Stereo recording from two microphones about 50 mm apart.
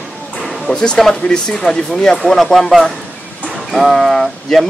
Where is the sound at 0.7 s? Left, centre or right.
Centre.